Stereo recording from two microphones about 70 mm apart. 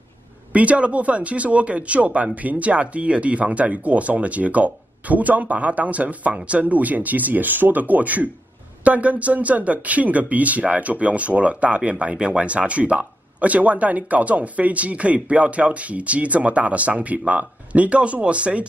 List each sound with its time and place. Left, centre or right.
0.5 s speech: centre